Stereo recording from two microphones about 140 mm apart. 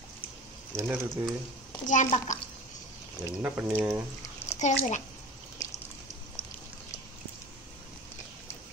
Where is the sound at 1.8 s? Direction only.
60° left (ahead or behind).